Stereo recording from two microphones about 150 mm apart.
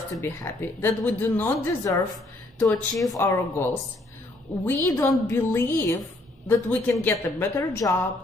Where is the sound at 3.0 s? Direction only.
20° left (ahead or behind).